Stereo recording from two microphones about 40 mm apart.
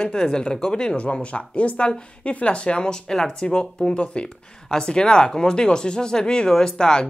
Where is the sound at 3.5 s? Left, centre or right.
Left.